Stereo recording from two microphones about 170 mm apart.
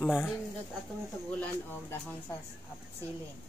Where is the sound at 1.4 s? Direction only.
10° left (ahead or behind).